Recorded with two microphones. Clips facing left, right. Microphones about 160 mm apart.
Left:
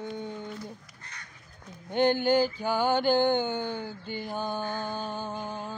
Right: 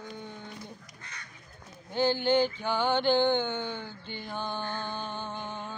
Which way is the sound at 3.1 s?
40° left (ahead or behind).